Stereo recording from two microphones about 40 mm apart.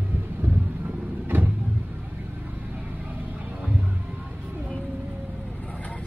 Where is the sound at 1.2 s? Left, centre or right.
Right.